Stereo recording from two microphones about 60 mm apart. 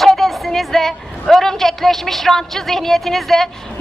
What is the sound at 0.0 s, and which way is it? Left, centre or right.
A woman's voice, centre.